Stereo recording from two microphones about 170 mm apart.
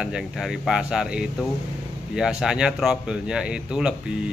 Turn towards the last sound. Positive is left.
turn(degrees=-5)  # may be behind; listen again after turning